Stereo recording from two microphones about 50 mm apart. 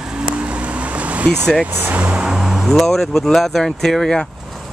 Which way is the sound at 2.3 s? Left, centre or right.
Centre.